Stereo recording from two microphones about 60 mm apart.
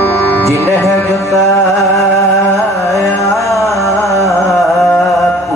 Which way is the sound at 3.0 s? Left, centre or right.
Left.